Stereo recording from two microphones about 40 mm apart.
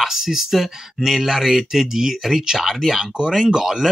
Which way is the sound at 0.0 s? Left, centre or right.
Centre.